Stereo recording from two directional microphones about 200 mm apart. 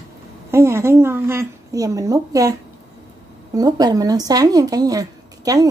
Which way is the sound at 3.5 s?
20° right (ahead or behind).